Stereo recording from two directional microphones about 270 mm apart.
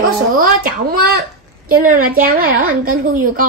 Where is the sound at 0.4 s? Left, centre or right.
Right.